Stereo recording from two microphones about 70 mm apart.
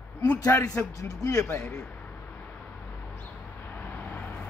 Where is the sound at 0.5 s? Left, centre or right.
Left.